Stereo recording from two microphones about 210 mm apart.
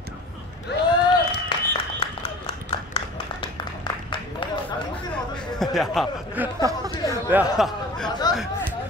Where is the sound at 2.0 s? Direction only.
25° left (ahead or behind).